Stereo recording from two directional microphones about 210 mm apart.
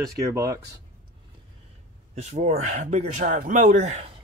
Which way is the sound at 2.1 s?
35° right (ahead or behind).